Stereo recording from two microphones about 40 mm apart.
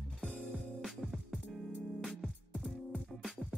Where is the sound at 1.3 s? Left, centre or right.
Centre.